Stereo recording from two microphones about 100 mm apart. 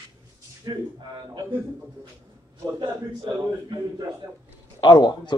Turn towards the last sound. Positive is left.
turn(degrees=45)  # may be behind; listen again after turning